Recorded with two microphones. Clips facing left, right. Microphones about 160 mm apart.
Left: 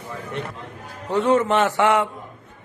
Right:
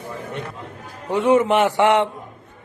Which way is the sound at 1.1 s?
10° right (ahead or behind).